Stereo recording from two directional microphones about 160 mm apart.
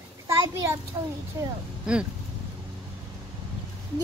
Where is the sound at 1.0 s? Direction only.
25° right (ahead or behind).